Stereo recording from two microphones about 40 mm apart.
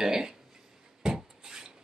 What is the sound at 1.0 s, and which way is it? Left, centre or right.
Rub, centre.